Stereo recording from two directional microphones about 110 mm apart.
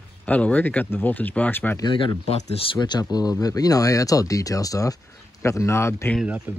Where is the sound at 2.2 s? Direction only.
70° left (ahead or behind).